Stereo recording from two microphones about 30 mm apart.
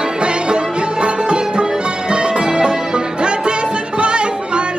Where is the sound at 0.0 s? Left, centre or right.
Right.